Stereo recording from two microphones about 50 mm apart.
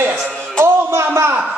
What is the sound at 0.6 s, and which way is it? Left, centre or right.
Music, right.